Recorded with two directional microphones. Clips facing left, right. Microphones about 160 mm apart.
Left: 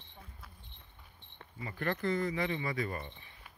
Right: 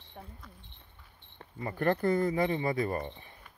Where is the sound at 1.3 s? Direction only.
45° right (ahead or behind).